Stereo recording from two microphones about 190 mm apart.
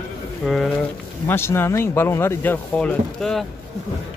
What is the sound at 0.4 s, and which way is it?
Speech, 5° left (ahead or behind).